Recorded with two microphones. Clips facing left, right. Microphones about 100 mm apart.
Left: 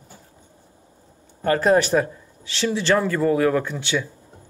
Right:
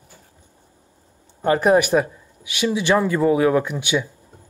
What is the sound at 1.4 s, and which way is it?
Speech, 15° right (ahead or behind).